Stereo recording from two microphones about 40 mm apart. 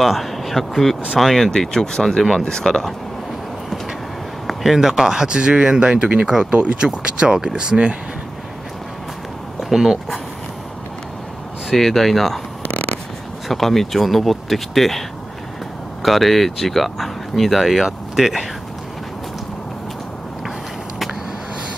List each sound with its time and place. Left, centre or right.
0.0 s speech: centre
1.5 s speech: centre
4.7 s speech: centre
9.6 s speech: centre
11.7 s speech: centre
12.6 s a sound: left
13.5 s speech: centre